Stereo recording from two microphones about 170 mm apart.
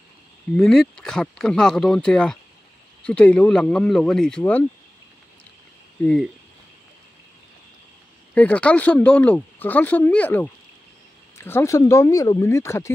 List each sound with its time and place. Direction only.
0.6 s speech: 5° left (ahead or behind)
6.0 s speech: centre (ahead or behind)
8.4 s speech: 10° left (ahead or behind)